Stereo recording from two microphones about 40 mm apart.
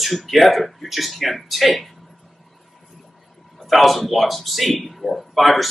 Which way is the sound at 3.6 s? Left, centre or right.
Centre.